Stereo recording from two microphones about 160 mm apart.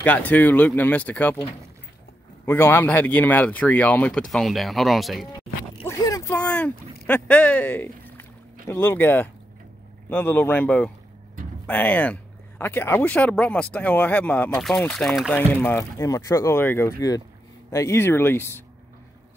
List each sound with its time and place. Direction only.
0.0 s speech: 10° left (ahead or behind)
2.4 s speech: 15° left (ahead or behind)
5.9 s a sound: 20° left (ahead or behind)
6.3 s vehicle: 10° left (ahead or behind)
7.1 s speech: 10° left (ahead or behind)
15.3 s speech: 10° left (ahead or behind)